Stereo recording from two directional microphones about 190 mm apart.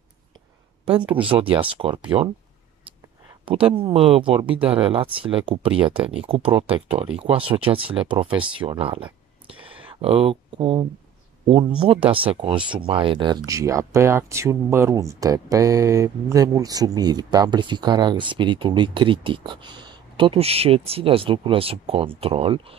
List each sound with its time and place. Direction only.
0.8 s speech: 25° right (ahead or behind)
2.0 s speech: 5° right (ahead or behind)
3.4 s speech: 25° right (ahead or behind)